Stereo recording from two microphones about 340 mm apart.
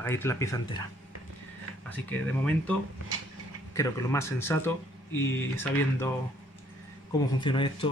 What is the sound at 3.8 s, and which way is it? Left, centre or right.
Speech, centre.